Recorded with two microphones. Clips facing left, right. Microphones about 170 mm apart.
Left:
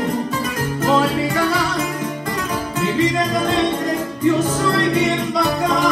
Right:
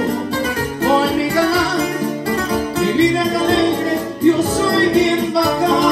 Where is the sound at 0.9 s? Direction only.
35° right (ahead or behind).